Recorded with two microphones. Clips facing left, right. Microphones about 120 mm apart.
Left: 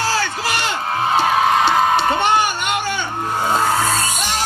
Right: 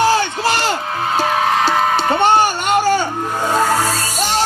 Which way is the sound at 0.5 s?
35° right (ahead or behind).